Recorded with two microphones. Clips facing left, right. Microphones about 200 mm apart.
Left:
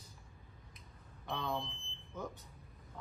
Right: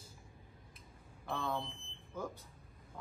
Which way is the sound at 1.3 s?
5° right (ahead or behind).